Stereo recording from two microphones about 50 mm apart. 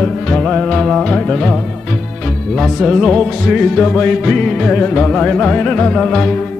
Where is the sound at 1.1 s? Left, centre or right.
Centre.